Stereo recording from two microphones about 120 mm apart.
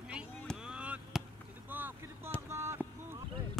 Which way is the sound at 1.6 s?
15° right (ahead or behind).